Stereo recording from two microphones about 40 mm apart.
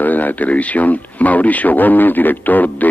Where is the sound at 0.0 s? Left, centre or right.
Left.